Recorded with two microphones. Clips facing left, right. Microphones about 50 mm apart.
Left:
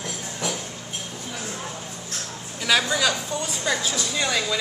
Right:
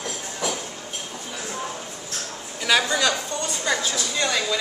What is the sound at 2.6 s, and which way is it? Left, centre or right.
A woman's voice, centre.